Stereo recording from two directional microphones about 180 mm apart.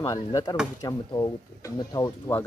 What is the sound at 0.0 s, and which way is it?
Speech, 20° left (ahead or behind).